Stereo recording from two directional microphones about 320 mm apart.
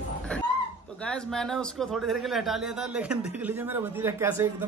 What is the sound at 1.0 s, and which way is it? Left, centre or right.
A man's voice, centre.